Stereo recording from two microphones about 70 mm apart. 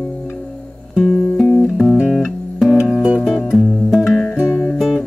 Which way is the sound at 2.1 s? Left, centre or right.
Centre.